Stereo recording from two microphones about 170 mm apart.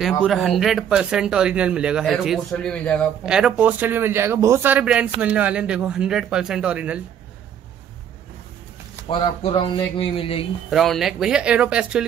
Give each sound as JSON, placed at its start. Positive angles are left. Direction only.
{"t": 0.0, "sound": "speech", "side_deg": 0}
{"t": 3.3, "sound": "speech", "side_deg": -5}
{"t": 9.1, "sound": "speech", "side_deg": 35}
{"t": 10.7, "sound": "speech", "side_deg": 0}